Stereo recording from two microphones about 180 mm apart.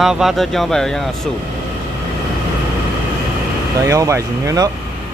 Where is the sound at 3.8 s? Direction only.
15° right (ahead or behind).